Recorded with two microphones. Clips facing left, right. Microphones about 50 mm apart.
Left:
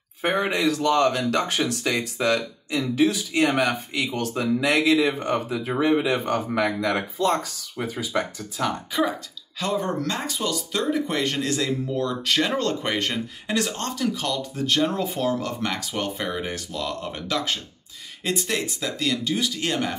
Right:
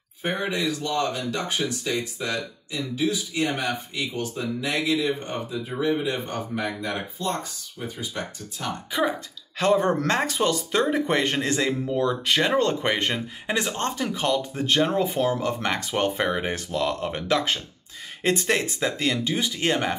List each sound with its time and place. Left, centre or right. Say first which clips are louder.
0.2 s speech: left 4 dB; left
9.6 s speech: right 5 dB; right
11.9 s speech: right 1 dB; centre
18.2 s speech: right 3 dB; right